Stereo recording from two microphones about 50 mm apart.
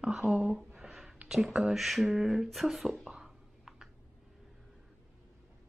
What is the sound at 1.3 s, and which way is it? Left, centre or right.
Speech, centre.